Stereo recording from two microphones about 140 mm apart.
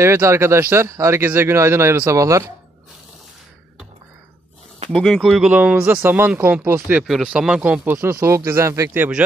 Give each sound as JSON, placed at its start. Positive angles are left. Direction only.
{"t": 0.0, "sound": "speech", "side_deg": -20}
{"t": 4.9, "sound": "speech", "side_deg": 0}
{"t": 7.0, "sound": "speech", "side_deg": -5}